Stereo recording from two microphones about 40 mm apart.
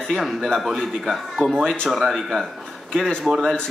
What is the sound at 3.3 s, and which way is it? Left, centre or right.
Speech, centre.